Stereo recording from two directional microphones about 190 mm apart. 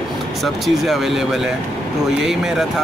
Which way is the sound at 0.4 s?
Centre (ahead or behind).